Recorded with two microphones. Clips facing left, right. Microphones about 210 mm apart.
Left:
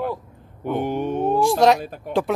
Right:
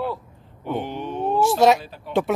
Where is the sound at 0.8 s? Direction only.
50° left (ahead or behind).